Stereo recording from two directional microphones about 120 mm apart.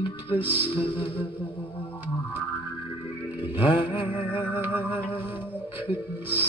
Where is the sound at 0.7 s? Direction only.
45° left (ahead or behind).